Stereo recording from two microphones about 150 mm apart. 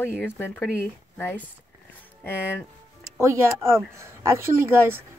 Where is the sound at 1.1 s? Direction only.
10° left (ahead or behind).